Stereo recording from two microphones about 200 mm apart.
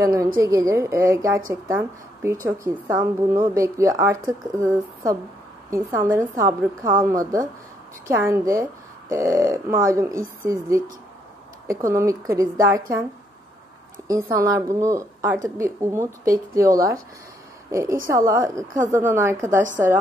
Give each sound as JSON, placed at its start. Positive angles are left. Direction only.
{"t": 0.0, "sound": "a woman's voice", "side_deg": -15}
{"t": 14.3, "sound": "a woman's voice", "side_deg": -15}